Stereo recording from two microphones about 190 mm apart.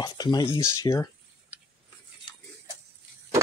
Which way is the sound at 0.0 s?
20° left (ahead or behind).